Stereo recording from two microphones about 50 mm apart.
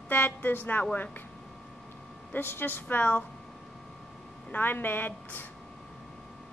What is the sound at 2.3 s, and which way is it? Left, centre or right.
Speech, left.